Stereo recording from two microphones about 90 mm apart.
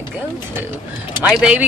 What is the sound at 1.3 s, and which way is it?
Speech, 10° right (ahead or behind).